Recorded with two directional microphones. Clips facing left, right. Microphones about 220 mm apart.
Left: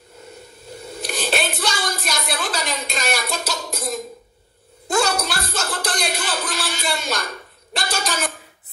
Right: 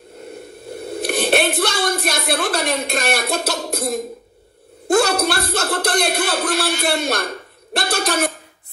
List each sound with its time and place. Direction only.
0.3 s speech: 60° right (ahead or behind)